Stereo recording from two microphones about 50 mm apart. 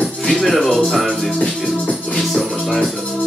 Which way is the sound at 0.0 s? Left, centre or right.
Centre.